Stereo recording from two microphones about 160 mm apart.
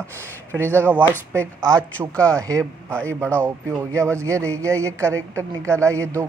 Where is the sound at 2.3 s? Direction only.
20° right (ahead or behind).